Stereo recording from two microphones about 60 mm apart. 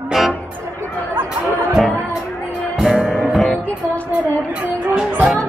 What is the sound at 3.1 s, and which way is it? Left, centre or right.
Music, centre.